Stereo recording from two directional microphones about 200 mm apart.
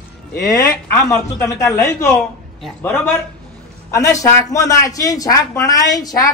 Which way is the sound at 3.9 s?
15° left (ahead or behind).